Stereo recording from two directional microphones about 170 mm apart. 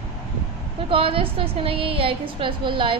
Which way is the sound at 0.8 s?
35° right (ahead or behind).